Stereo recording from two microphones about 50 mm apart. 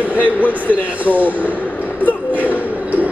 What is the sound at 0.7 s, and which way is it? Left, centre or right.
Speech, right.